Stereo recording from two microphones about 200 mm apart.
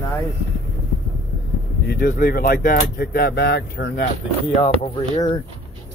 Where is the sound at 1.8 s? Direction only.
50° left (ahead or behind).